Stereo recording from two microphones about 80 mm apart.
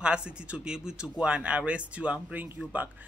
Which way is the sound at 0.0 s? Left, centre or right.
Centre.